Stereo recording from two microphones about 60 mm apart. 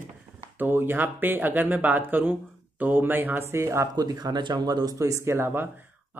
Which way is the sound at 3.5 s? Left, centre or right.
Right.